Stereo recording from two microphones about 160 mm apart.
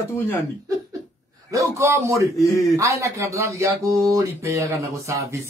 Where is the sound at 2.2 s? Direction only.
20° left (ahead or behind).